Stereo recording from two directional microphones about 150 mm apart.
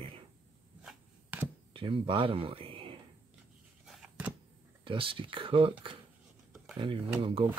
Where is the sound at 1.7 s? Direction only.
35° right (ahead or behind).